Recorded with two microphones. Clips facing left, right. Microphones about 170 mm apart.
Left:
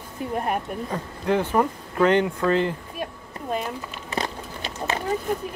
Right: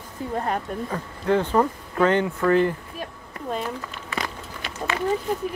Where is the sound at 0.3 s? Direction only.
15° left (ahead or behind).